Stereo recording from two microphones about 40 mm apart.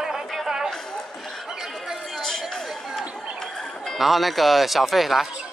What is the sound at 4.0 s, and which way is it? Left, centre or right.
Speech, centre.